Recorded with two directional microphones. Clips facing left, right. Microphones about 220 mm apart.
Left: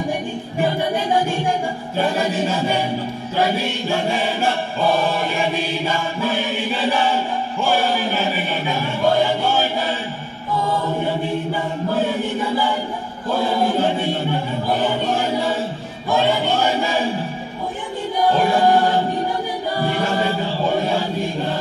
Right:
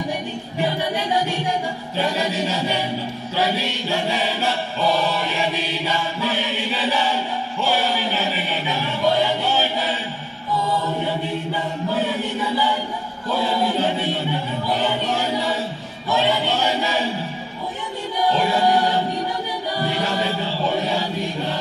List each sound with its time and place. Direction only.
0.6 s chant: 50° left (ahead or behind)
12.1 s chant: 50° left (ahead or behind)
18.3 s music: 50° left (ahead or behind)
19.9 s choir: 50° left (ahead or behind)